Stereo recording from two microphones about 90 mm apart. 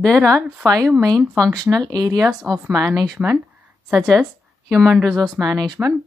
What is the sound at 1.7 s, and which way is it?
Speech, 40° right (ahead or behind).